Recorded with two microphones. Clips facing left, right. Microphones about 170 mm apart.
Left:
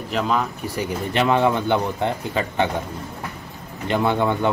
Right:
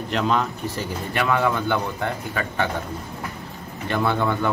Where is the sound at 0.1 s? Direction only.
Centre (ahead or behind).